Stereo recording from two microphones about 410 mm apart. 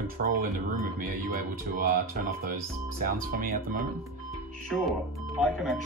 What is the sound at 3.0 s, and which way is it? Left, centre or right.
Speech, right.